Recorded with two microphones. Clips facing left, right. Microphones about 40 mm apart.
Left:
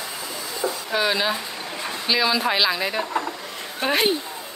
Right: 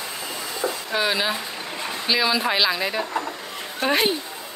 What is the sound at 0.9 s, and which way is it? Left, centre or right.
Speech, centre.